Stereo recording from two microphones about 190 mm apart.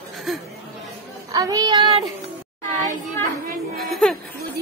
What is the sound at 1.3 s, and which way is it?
Speech, 20° right (ahead or behind).